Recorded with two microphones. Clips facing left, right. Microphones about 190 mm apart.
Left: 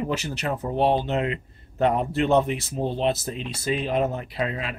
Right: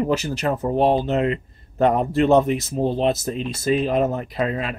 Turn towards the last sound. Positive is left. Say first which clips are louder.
# right 4 dB
turn(degrees=-45)  # may be behind; listen again after turning